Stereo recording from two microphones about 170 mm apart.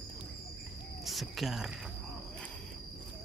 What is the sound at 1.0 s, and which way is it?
Speech, centre (ahead or behind).